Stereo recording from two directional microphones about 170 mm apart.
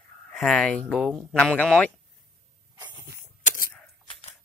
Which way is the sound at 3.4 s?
55° left (ahead or behind).